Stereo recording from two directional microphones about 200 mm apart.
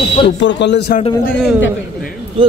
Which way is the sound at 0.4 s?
65° left (ahead or behind).